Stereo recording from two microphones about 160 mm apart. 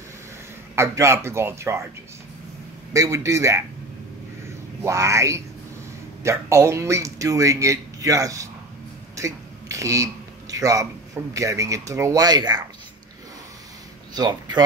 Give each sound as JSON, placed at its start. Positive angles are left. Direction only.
{"t": 0.7, "sound": "speech", "side_deg": -15}
{"t": 2.9, "sound": "speech", "side_deg": -20}
{"t": 4.8, "sound": "speech", "side_deg": -20}
{"t": 14.1, "sound": "speech", "side_deg": -25}